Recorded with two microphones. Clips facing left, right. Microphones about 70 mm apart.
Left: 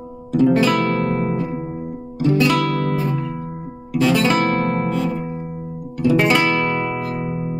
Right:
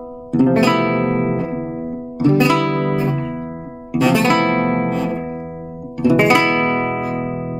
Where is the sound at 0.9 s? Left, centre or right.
Right.